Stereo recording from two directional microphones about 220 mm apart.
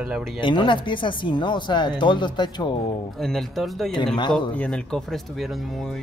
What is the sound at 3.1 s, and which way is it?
Speech, centre (ahead or behind).